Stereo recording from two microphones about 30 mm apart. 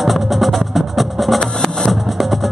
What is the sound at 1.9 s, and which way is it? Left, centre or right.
Music, centre.